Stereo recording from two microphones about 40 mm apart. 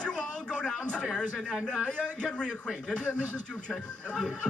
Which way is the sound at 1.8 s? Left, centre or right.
Left.